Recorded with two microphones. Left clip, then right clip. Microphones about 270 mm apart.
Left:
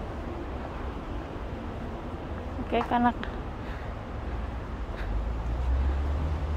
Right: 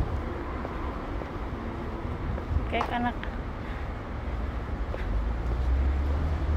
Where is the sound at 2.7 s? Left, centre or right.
Left.